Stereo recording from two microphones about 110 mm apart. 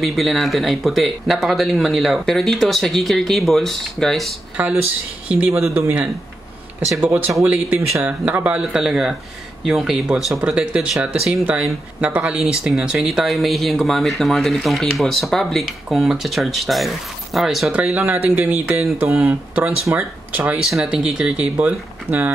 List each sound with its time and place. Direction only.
0.0 s speech: centre (ahead or behind)
4.6 s speech: 15° right (ahead or behind)